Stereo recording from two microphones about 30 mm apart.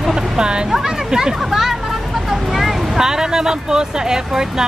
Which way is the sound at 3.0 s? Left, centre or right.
Right.